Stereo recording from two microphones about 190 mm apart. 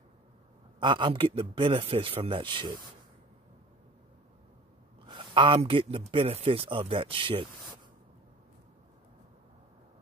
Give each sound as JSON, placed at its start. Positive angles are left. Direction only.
{"t": 0.7, "sound": "speech", "side_deg": -25}
{"t": 5.0, "sound": "speech", "side_deg": -25}